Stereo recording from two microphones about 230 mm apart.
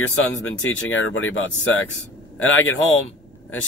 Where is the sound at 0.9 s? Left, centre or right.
Left.